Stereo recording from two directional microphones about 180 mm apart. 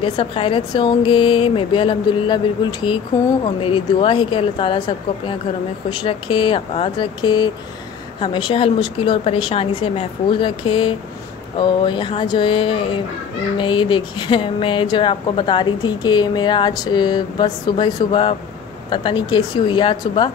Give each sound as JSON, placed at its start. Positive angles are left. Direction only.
{"t": 0.0, "sound": "speech", "side_deg": 30}